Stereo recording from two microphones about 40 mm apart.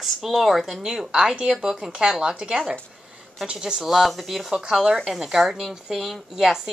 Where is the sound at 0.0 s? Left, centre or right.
Centre.